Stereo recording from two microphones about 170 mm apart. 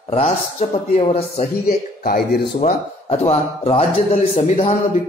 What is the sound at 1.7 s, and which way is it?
Speech, 60° left (ahead or behind).